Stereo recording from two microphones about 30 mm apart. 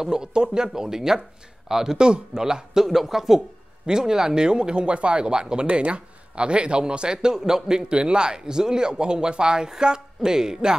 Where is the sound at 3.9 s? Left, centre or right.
Right.